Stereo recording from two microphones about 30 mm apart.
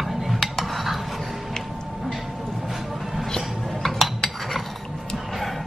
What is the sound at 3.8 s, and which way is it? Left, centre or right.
Cutlery, centre.